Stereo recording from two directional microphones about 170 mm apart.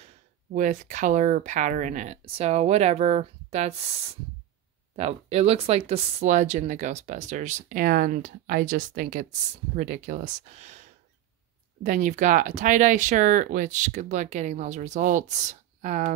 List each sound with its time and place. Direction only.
0.0 s speech: 45° right (ahead or behind)